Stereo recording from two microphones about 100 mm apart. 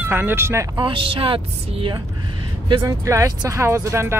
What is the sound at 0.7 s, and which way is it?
A woman's voice, 55° right (ahead or behind).